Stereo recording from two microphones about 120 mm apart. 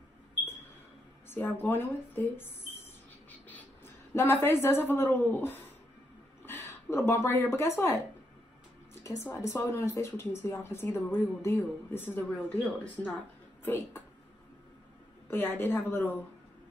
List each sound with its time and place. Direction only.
1.3 s a woman's voice: 15° left (ahead or behind)
9.0 s speech: 20° left (ahead or behind)
15.2 s speech: 20° left (ahead or behind)